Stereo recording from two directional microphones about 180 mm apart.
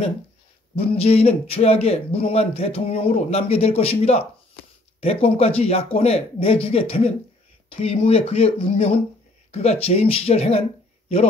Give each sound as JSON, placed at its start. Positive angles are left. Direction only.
{"t": 0.7, "sound": "speech", "side_deg": 35}